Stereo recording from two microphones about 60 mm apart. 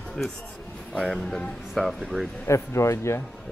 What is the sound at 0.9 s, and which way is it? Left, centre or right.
Speech, centre.